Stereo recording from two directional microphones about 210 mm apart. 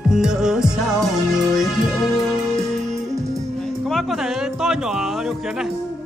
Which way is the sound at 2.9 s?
15° right (ahead or behind).